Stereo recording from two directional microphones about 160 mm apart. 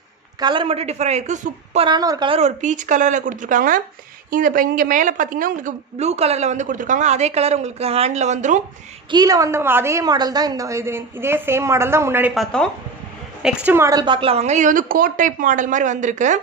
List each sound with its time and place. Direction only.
0.4 s a woman's voice: 30° right (ahead or behind); by 1.9 s 45° right (ahead or behind)
1.9 s a woman's voice: 25° right (ahead or behind)
2.4 s a woman's voice: 50° right (ahead or behind)
9.1 s a woman's voice: 25° right (ahead or behind)
13.4 s a woman's voice: 5° right (ahead or behind)
13.8 s a woman's voice: 25° right (ahead or behind); by 16.3 s 50° right (ahead or behind)